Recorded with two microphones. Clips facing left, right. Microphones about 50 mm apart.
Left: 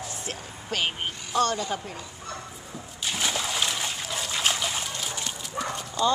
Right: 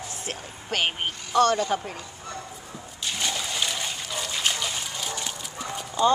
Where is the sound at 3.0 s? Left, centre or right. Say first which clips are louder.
Left 1 dB; centre.